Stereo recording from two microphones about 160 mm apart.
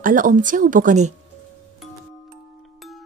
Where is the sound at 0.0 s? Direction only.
55° right (ahead or behind).